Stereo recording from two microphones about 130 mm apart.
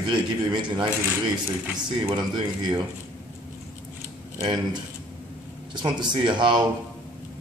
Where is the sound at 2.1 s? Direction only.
35° right (ahead or behind).